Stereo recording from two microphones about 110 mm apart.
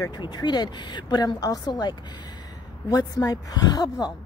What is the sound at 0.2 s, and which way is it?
A woman's voice, 40° left (ahead or behind).